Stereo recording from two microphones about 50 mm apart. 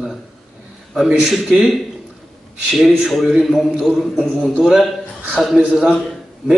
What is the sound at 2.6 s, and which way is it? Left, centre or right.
Speech, centre.